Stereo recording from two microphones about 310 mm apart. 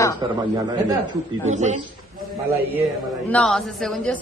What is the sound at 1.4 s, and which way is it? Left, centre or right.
Speech, right.